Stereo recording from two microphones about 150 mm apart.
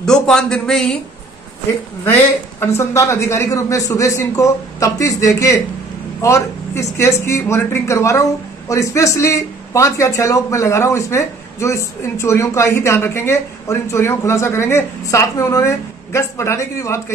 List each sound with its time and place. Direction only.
0.0 s a man's voice: 5° left (ahead or behind)
2.1 s speech: 15° left (ahead or behind)